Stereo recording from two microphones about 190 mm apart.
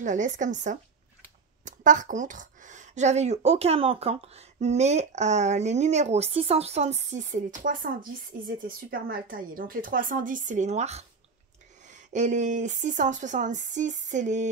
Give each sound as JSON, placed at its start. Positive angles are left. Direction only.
{"t": 0.0, "sound": "speech", "side_deg": -40}